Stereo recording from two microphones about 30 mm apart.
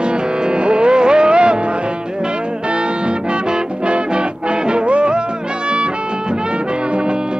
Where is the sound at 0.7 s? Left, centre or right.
Right.